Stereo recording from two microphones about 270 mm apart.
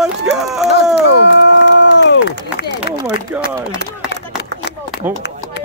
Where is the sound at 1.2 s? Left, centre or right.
Left.